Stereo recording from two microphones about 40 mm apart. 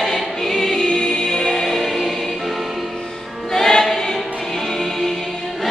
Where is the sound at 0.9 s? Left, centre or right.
Centre.